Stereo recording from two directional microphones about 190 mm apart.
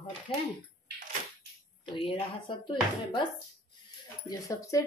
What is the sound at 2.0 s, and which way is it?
Speech, 25° left (ahead or behind).